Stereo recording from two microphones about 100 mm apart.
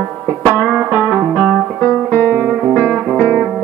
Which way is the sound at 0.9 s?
15° right (ahead or behind).